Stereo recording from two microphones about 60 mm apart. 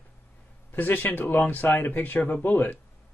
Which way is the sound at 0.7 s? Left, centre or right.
Left.